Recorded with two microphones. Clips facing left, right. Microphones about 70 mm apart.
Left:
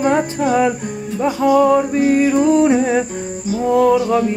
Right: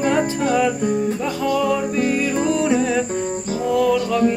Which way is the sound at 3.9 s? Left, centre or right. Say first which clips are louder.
Left 2 dB; centre.